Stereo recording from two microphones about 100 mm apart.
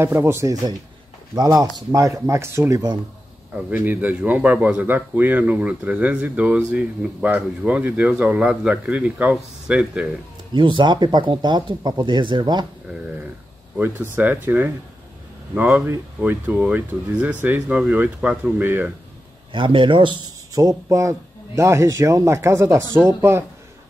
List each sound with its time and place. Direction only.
0.0 s speech: 25° right (ahead or behind)
1.3 s a man's voice: 40° right (ahead or behind); by 10.0 s 10° right (ahead or behind)
10.5 s speech: 55° right (ahead or behind)
13.0 s a sound: 15° right (ahead or behind)
13.7 s a man's voice: 20° right (ahead or behind)
19.5 s speech: 55° right (ahead or behind)
20.5 s speech: 35° right (ahead or behind)